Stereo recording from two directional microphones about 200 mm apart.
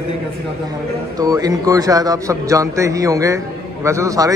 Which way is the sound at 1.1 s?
20° right (ahead or behind).